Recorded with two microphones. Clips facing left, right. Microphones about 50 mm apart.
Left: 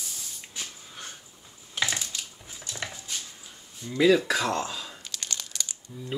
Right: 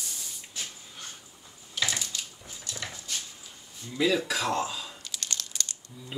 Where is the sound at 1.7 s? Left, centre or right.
Left.